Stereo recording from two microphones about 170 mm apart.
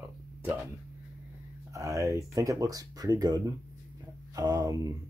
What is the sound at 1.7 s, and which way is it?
Speech, 15° right (ahead or behind).